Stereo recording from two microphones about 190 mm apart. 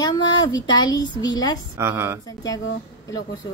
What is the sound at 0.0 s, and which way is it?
A woman's voice, 20° left (ahead or behind).